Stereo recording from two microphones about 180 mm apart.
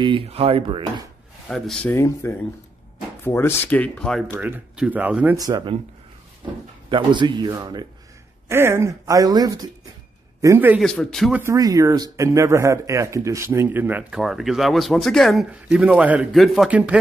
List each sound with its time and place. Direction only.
0.0 s speech: 30° right (ahead or behind)
1.5 s speech: 5° left (ahead or behind)
4.3 s speech: 10° right (ahead or behind)
6.9 s speech: 25° right (ahead or behind)
8.5 s speech: 15° right (ahead or behind)
10.8 s a man's voice: 5° left (ahead or behind)
11.3 s speech: 15° right (ahead or behind)